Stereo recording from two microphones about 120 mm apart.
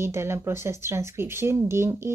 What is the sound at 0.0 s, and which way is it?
Speech, 20° right (ahead or behind).